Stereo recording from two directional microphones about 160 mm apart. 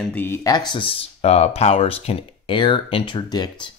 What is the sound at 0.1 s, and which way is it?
Speech, 15° left (ahead or behind).